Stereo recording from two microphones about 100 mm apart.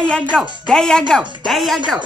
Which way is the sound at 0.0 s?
10° left (ahead or behind).